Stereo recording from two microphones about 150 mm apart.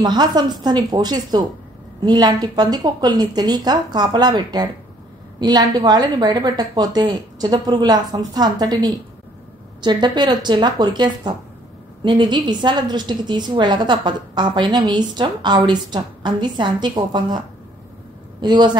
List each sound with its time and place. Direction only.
0.0 s a woman's voice: 30° right (ahead or behind)
18.4 s a woman's voice: 30° right (ahead or behind)